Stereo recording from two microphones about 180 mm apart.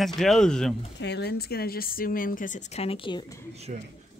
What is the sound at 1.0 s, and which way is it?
Speech, 65° left (ahead or behind).